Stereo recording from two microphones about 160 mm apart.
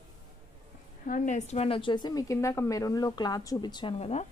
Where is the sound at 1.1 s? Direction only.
50° left (ahead or behind).